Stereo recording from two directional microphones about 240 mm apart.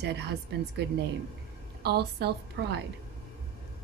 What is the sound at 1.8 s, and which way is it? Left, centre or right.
A woman's voice, right.